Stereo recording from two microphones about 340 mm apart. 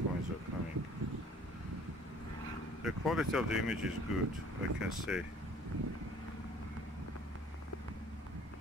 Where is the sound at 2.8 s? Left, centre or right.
Centre.